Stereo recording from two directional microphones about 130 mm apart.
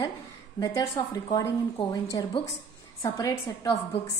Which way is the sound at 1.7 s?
40° left (ahead or behind).